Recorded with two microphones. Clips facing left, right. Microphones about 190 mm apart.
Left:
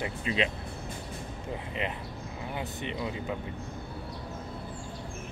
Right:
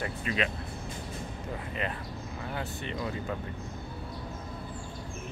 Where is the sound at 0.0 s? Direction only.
25° left (ahead or behind).